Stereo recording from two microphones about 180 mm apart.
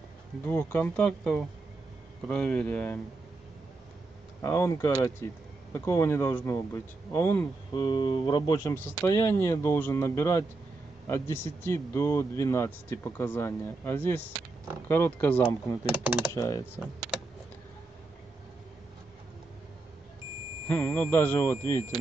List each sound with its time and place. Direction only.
0.5 s speech: 10° left (ahead or behind)
4.4 s speech: 15° left (ahead or behind)
20.6 s speech: 10° left (ahead or behind)